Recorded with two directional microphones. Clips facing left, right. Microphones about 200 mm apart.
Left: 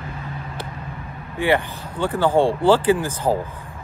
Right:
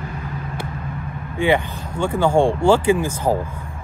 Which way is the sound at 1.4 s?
15° right (ahead or behind).